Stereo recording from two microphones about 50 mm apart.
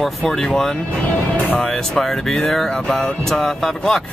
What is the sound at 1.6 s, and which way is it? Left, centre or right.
Speech, centre.